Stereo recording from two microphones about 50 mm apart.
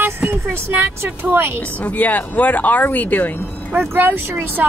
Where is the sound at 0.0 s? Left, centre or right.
Right.